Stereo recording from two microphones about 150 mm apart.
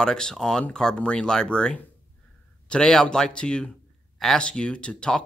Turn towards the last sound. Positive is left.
turn(degrees=5)  # may be behind; listen again after turning